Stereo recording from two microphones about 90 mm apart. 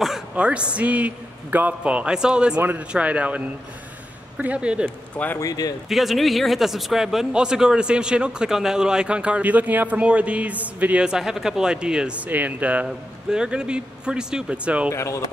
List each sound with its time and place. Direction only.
0.4 s speech: 10° right (ahead or behind)
5.1 s a man's voice: 15° left (ahead or behind)
5.4 s speech: 45° left (ahead or behind)
5.9 s speech: centre (ahead or behind)
14.9 s speech: 35° left (ahead or behind)